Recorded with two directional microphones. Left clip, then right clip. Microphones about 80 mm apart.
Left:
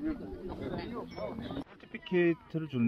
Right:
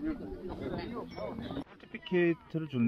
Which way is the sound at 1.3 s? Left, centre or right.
Left.